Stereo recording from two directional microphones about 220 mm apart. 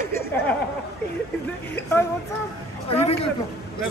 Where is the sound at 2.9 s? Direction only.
25° left (ahead or behind).